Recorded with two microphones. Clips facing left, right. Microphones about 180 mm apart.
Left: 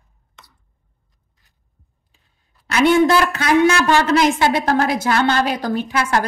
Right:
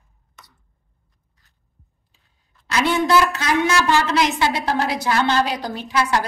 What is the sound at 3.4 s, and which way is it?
A woman's voice, 50° left (ahead or behind).